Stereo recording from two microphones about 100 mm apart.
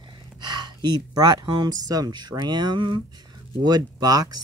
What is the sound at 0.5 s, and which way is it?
Speech, 45° right (ahead or behind).